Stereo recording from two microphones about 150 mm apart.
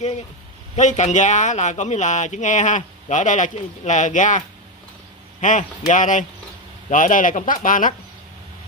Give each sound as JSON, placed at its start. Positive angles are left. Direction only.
{"t": 0.7, "sound": "speech", "side_deg": 55}
{"t": 5.4, "sound": "speech", "side_deg": 55}